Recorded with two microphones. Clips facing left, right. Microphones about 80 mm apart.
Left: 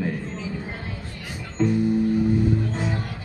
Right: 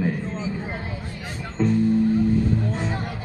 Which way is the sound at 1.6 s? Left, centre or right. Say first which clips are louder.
Even; centre.